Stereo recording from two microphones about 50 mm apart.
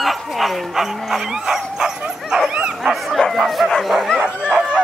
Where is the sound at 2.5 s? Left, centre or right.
Right.